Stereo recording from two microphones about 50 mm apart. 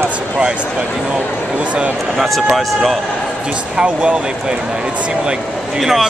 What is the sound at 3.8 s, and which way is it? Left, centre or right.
Speech, centre.